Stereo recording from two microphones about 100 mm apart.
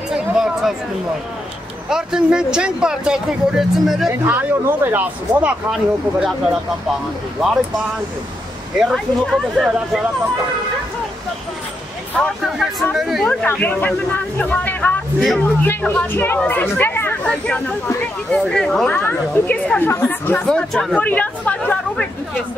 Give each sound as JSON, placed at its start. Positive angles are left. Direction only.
{"t": 0.3, "sound": "a sound", "side_deg": -5}
{"t": 1.9, "sound": "speech", "side_deg": -5}
{"t": 4.1, "sound": "speech", "side_deg": -20}
{"t": 5.7, "sound": "speech", "side_deg": -5}
{"t": 8.9, "sound": "speech", "side_deg": 5}
{"t": 12.2, "sound": "speech", "side_deg": 5}
{"t": 13.3, "sound": "speech", "side_deg": 15}
{"t": 15.1, "sound": "speech", "side_deg": 5}
{"t": 15.6, "sound": "speech", "side_deg": 20}
{"t": 17.2, "sound": "speech", "side_deg": 10}
{"t": 18.9, "sound": "speech", "side_deg": 20}
{"t": 20.4, "sound": "speech", "side_deg": 5}
{"t": 20.9, "sound": "speech", "side_deg": 15}